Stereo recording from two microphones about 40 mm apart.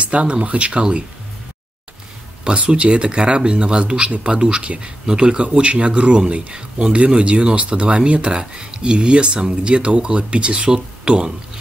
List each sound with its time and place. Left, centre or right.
0.0 s speech: right
2.4 s speech: right